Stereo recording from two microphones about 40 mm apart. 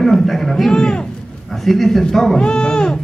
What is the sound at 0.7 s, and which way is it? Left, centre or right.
Speech, centre.